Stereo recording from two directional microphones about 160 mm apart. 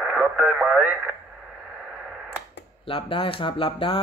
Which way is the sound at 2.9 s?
35° left (ahead or behind).